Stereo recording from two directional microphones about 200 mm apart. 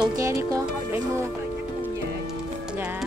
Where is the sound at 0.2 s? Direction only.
15° right (ahead or behind).